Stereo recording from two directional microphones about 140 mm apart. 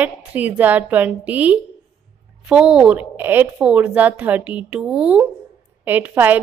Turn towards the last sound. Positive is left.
turn(degrees=-15)  # may be behind; listen again after turning